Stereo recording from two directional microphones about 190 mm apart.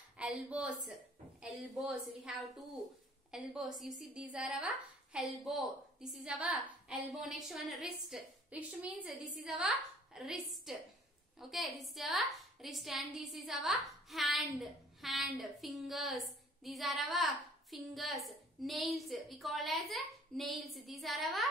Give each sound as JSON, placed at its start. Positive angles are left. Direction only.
{"t": 0.2, "sound": "a woman's voice", "side_deg": -5}